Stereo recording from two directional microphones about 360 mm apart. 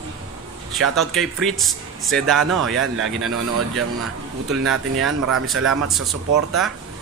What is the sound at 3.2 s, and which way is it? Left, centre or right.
Speech, right.